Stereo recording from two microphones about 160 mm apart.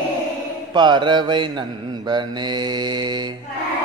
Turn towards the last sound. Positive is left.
turn(degrees=-25)  # may be behind; listen again after turning